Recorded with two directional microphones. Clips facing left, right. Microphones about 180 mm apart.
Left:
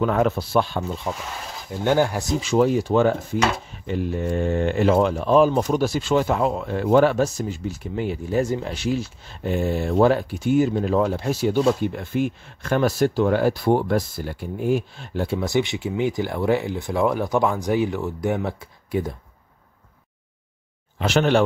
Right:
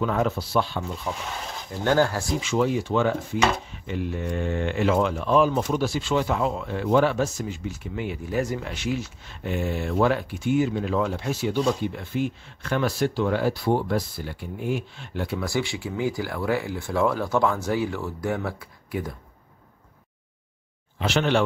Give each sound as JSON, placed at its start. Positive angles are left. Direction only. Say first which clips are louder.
{"t": 0.0, "sound": "speech", "louder": "left 4 dB", "side_deg": 55}
{"t": 1.0, "sound": "speech", "louder": "left 2 dB", "side_deg": 0}
{"t": 1.9, "sound": "speech", "louder": "left 2 dB", "side_deg": 15}
{"t": 2.4, "sound": "speech", "louder": "left 6 dB", "side_deg": 40}
{"t": 15.2, "sound": "speech", "louder": "left 5 dB", "side_deg": 20}
{"t": 21.0, "sound": "speech", "louder": "left 4 dB", "side_deg": 45}